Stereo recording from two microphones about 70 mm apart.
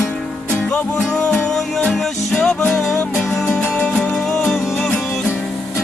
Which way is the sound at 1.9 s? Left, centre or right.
Centre.